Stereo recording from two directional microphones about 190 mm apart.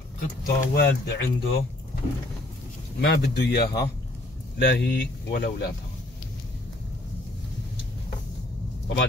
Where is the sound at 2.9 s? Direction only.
60° left (ahead or behind).